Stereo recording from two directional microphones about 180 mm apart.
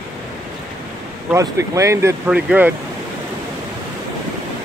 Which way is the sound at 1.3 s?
15° right (ahead or behind).